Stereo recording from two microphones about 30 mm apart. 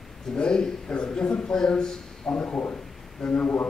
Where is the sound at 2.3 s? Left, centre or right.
Left.